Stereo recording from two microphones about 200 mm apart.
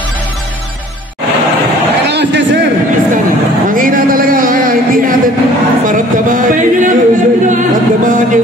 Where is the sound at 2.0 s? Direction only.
60° right (ahead or behind).